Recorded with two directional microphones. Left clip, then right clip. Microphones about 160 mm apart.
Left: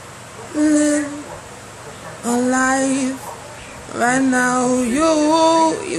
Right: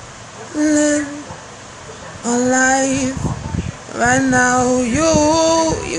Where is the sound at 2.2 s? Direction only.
10° left (ahead or behind).